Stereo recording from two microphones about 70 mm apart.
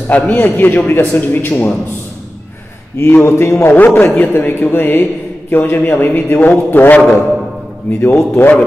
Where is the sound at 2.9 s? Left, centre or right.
Left.